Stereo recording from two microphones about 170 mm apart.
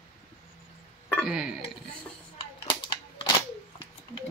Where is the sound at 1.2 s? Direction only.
5° right (ahead or behind).